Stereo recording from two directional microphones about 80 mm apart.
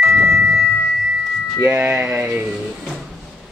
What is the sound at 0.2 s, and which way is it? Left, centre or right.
Music, right.